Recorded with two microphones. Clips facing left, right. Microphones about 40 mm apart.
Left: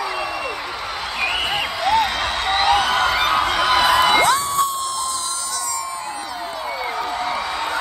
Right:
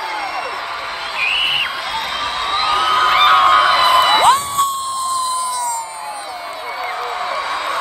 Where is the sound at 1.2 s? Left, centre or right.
Right.